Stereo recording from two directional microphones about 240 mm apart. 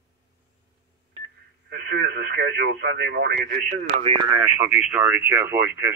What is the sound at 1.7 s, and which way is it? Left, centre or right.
Speech, right.